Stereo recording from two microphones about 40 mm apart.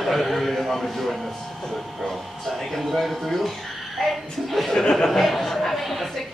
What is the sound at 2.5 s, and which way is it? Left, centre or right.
Speech, centre.